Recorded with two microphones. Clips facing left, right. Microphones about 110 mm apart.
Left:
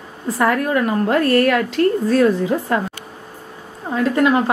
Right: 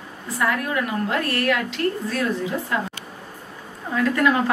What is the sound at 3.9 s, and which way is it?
Speech, 30° left (ahead or behind).